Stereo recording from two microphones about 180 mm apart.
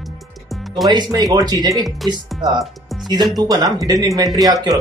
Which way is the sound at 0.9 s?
20° right (ahead or behind).